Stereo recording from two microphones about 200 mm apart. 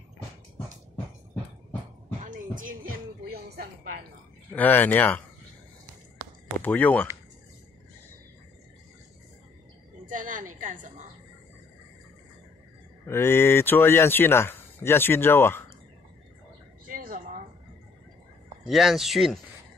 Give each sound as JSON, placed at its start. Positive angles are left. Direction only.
{"t": 2.2, "sound": "music", "side_deg": -40}
{"t": 4.5, "sound": "speech", "side_deg": 10}
{"t": 6.6, "sound": "speech", "side_deg": 10}
{"t": 10.0, "sound": "a sound", "side_deg": -40}
{"t": 10.6, "sound": "a woman's voice", "side_deg": -40}
{"t": 13.0, "sound": "speech", "side_deg": 10}
{"t": 16.9, "sound": "a sound", "side_deg": -45}
{"t": 18.7, "sound": "speech", "side_deg": 0}